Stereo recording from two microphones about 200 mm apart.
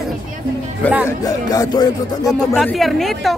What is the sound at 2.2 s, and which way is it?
Speech, centre (ahead or behind).